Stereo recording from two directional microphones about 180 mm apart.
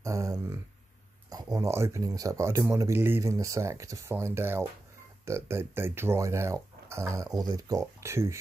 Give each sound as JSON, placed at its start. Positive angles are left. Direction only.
{"t": 0.0, "sound": "speech", "side_deg": -15}